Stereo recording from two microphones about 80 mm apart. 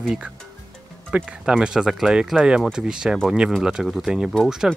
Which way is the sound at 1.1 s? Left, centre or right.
Centre.